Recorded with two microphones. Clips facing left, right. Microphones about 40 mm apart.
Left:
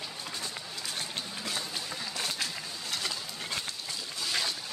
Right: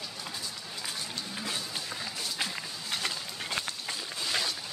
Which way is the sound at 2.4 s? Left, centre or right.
Right.